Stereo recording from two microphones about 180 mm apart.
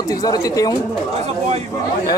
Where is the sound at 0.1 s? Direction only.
20° left (ahead or behind).